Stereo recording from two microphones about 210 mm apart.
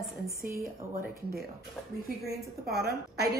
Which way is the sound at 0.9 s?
50° right (ahead or behind).